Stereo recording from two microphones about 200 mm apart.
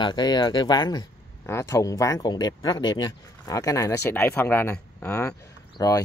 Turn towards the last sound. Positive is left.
turn(degrees=15)  # may be behind; listen again after turning